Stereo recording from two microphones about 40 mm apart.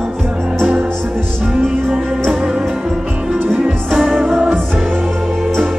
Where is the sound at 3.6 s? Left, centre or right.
Centre.